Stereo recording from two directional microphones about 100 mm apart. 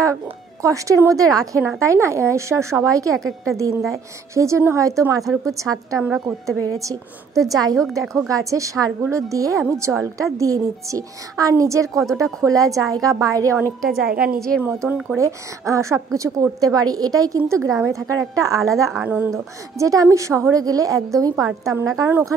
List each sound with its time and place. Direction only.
0.0 s a woman's voice: 30° right (ahead or behind)
8.0 s a woman's voice: centre (ahead or behind)
8.3 s a woman's voice: 35° right (ahead or behind)
13.8 s a woman's voice: 5° right (ahead or behind)
14.6 s a woman's voice: 20° right (ahead or behind)
15.1 s a woman's voice: 30° right (ahead or behind)
19.0 s speech: 15° right (ahead or behind)
19.3 s a woman's voice: 35° right (ahead or behind)